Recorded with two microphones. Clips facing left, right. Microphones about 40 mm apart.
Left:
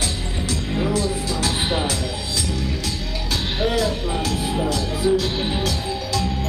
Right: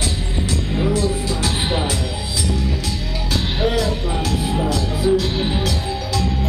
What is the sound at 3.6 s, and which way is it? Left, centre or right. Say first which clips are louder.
Music: right 1 dB; centre.